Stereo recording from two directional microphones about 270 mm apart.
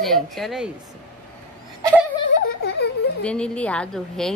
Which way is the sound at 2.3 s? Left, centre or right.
Left.